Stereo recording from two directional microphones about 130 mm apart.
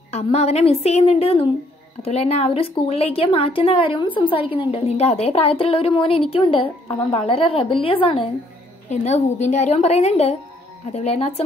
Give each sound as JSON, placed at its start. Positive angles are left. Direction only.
{"t": 0.1, "sound": "a woman's voice", "side_deg": 55}
{"t": 8.9, "sound": "a woman's voice", "side_deg": 60}